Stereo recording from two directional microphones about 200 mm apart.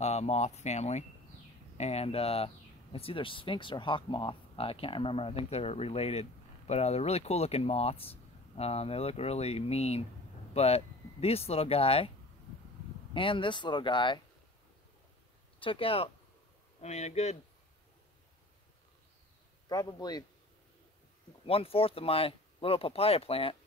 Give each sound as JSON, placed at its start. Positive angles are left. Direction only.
{"t": 0.0, "sound": "speech", "side_deg": 35}
{"t": 13.1, "sound": "speech", "side_deg": 25}
{"t": 15.6, "sound": "speech", "side_deg": 25}
{"t": 19.7, "sound": "speech", "side_deg": 20}
{"t": 21.5, "sound": "speech", "side_deg": 30}